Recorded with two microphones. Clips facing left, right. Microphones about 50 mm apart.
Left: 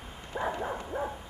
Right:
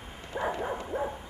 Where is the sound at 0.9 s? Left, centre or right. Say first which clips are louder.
Right 2 dB; left.